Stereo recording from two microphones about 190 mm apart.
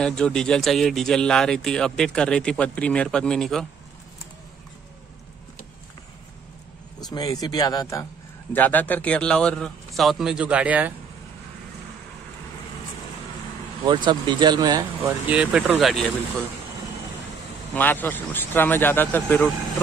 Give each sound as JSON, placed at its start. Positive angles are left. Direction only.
{"t": 0.0, "sound": "speech", "side_deg": 5}
{"t": 7.0, "sound": "speech", "side_deg": 20}
{"t": 13.8, "sound": "speech", "side_deg": -25}
{"t": 15.2, "sound": "speech", "side_deg": -5}
{"t": 17.7, "sound": "speech", "side_deg": 10}